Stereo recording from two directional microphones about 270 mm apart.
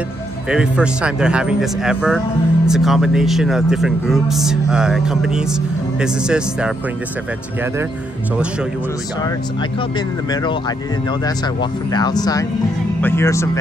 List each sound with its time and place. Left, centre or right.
0.5 s speech: centre
11.9 s speech: centre